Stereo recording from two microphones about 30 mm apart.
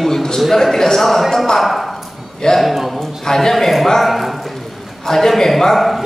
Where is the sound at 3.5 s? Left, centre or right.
Centre.